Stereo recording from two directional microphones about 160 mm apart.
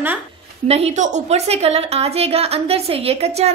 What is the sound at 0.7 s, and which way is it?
A woman's voice, 40° right (ahead or behind).